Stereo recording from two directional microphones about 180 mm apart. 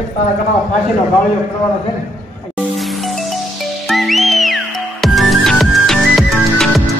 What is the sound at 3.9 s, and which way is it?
Music, centre (ahead or behind).